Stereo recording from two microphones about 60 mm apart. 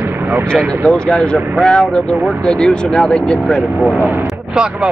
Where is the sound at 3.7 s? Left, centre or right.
Centre.